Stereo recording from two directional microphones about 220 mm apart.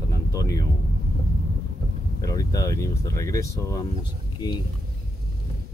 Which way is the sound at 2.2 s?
15° left (ahead or behind).